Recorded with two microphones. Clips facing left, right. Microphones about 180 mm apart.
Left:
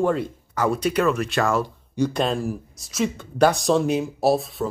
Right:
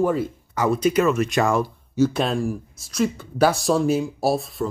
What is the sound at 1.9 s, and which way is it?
Speech, 5° right (ahead or behind).